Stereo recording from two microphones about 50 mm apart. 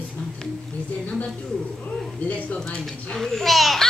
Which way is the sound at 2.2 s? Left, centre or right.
Left.